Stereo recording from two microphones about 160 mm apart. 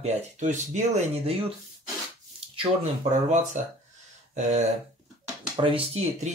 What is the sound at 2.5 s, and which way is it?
Speech, 40° right (ahead or behind).